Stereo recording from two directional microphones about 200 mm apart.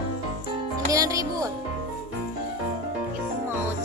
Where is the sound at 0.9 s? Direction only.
15° right (ahead or behind).